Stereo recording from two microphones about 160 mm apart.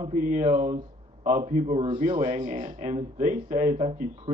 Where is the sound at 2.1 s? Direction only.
50° right (ahead or behind).